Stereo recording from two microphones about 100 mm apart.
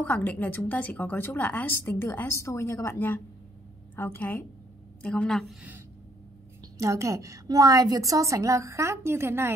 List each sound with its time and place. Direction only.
0.0 s a woman's voice: 15° left (ahead or behind)
6.8 s a woman's voice: 30° right (ahead or behind)